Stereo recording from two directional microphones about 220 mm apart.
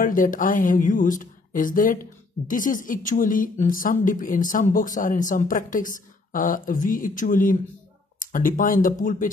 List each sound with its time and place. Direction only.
0.0 s speech: 40° left (ahead or behind)